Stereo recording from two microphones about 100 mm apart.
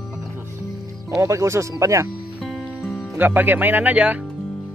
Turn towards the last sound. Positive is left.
turn(degrees=-15)  # may be behind; listen again after turning